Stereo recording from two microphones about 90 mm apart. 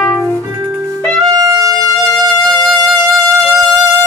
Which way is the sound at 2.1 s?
10° left (ahead or behind).